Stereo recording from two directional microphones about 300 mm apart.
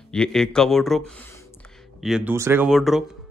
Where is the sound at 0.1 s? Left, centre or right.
Centre.